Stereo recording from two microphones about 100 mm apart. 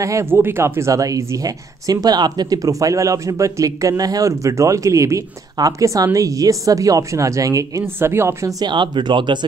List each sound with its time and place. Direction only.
0.0 s speech: 30° right (ahead or behind)
8.6 s speech: 50° right (ahead or behind)